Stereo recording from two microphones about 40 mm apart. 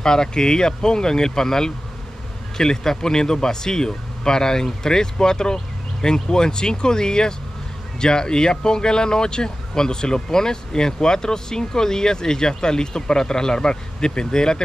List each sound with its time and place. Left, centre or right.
0.0 s speech: centre